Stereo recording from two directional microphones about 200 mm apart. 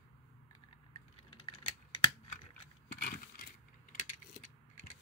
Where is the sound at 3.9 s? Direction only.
40° left (ahead or behind).